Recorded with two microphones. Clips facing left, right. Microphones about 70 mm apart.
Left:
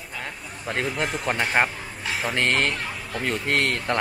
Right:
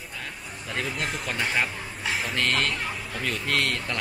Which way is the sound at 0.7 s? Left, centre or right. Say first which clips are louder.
Left 3 dB; left.